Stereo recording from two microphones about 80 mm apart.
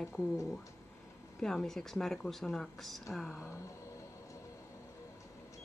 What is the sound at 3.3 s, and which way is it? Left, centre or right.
Speech, left.